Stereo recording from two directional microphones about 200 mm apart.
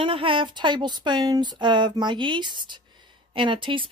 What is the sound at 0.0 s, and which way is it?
Speech, 25° right (ahead or behind).